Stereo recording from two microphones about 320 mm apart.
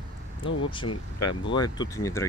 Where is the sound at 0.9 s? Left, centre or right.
Left.